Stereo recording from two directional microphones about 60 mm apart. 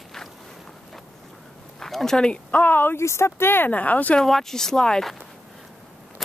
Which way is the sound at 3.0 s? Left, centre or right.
Left.